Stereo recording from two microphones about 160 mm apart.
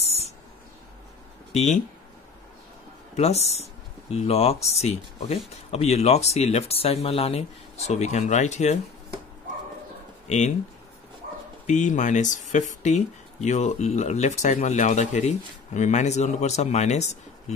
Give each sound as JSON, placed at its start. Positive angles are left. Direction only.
{"t": 1.5, "sound": "speech", "side_deg": 45}
{"t": 3.2, "sound": "speech", "side_deg": 40}
{"t": 10.2, "sound": "speech", "side_deg": 45}
{"t": 11.6, "sound": "speech", "side_deg": 50}